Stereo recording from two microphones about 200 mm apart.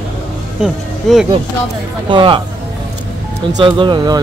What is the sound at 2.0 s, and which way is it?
Speech, 25° right (ahead or behind).